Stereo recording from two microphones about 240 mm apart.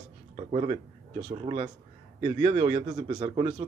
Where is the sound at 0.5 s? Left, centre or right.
Right.